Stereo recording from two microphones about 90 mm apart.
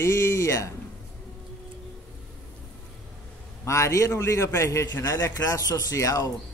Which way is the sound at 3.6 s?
35° left (ahead or behind).